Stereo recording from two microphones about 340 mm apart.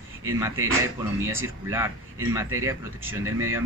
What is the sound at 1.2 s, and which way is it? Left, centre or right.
A man's voice, centre.